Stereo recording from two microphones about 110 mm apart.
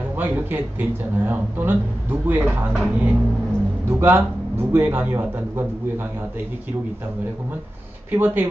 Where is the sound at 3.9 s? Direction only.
20° right (ahead or behind).